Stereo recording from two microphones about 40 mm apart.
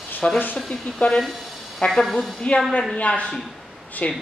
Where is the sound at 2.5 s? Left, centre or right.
Left.